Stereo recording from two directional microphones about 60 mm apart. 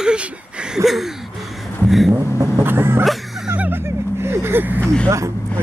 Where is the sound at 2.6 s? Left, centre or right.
Right.